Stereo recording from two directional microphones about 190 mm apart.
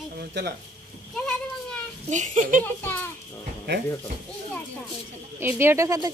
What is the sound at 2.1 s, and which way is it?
Speech, 40° right (ahead or behind).